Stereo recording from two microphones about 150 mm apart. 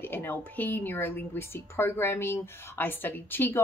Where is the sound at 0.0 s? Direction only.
15° left (ahead or behind).